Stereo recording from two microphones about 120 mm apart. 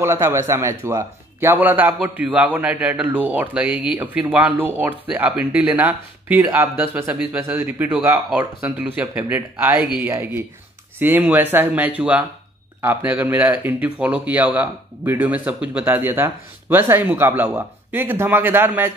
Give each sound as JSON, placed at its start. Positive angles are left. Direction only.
{"t": 0.0, "sound": "a man's voice", "side_deg": -25}